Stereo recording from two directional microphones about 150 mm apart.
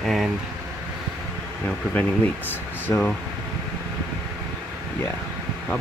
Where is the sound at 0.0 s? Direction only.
Centre (ahead or behind).